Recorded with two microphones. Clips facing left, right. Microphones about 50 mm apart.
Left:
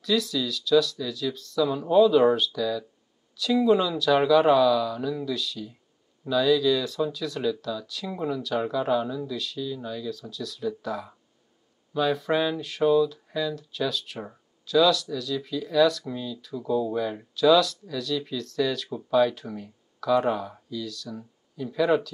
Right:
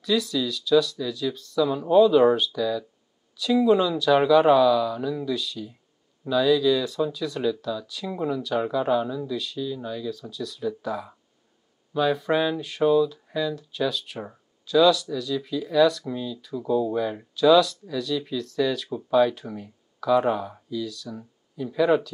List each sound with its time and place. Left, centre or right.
0.0 s speech: centre